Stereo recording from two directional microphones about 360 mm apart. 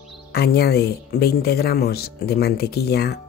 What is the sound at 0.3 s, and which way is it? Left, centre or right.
Speech, left.